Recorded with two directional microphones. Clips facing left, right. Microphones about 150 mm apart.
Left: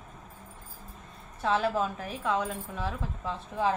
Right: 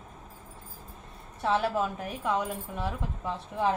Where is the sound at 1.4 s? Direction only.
15° right (ahead or behind).